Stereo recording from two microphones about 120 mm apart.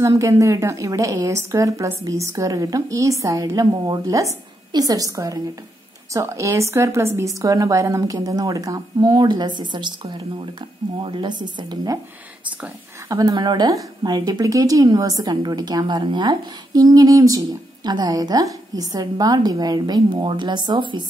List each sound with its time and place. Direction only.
0.0 s a woman's voice: 25° right (ahead or behind)
13.1 s a woman's voice: 30° right (ahead or behind)